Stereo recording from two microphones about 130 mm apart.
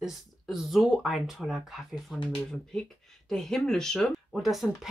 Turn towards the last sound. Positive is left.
turn(degrees=0)  # may be behind; listen again after turning